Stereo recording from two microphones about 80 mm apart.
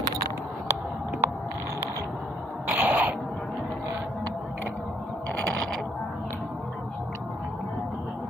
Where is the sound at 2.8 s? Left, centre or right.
Centre.